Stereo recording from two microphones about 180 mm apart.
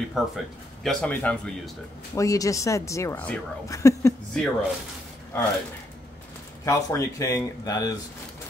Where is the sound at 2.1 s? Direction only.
20° left (ahead or behind).